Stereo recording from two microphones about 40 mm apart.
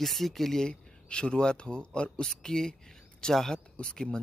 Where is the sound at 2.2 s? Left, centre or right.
Centre.